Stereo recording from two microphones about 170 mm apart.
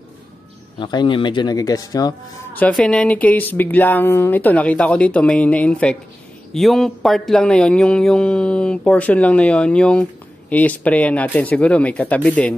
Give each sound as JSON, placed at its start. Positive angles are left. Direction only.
{"t": 0.7, "sound": "speech", "side_deg": 25}
{"t": 2.5, "sound": "speech", "side_deg": 5}